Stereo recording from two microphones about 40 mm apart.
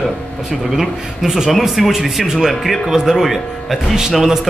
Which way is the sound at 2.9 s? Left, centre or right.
Centre.